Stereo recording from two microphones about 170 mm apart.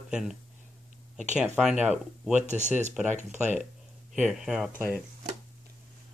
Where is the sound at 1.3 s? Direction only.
5° right (ahead or behind).